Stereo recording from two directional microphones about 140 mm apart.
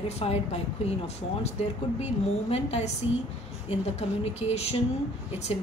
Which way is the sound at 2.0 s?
50° left (ahead or behind).